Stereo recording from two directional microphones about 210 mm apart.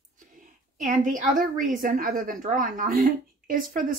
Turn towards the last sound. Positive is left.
turn(degrees=-40)  # may be behind; listen again after turning